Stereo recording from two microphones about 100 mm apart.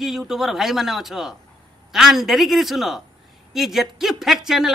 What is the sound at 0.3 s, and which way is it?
A man's voice, 5° right (ahead or behind).